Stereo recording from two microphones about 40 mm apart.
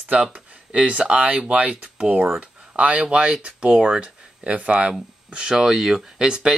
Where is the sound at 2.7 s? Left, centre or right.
Right.